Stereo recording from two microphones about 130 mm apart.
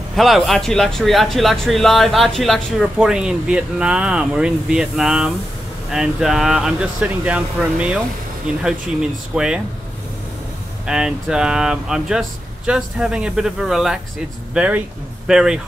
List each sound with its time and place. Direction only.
0.1 s speech: centre (ahead or behind)
10.9 s speech: 5° right (ahead or behind)